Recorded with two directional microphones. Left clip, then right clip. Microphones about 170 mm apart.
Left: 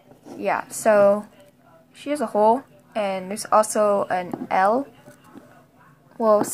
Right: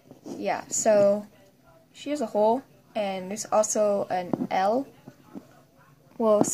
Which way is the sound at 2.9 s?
15° right (ahead or behind).